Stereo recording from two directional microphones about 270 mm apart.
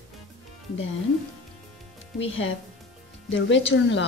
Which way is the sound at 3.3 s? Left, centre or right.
Left.